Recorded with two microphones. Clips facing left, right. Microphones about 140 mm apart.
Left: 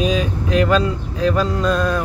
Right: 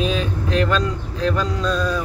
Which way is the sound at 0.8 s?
55° left (ahead or behind).